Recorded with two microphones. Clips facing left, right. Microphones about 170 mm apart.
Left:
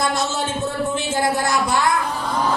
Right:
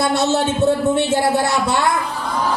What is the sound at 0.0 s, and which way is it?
Speech, 65° right (ahead or behind).